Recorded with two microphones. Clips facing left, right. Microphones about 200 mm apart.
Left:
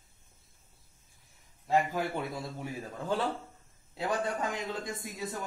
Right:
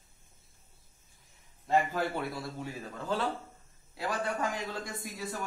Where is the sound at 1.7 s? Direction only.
15° left (ahead or behind).